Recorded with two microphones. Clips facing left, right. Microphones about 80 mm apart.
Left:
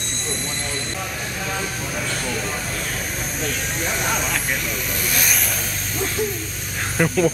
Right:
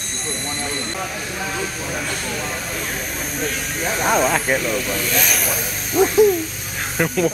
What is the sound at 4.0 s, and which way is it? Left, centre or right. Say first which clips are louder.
Speech: right 11 dB; right.